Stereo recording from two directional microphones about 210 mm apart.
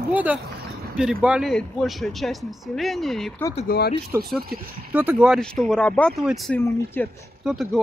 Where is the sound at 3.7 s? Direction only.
45° left (ahead or behind).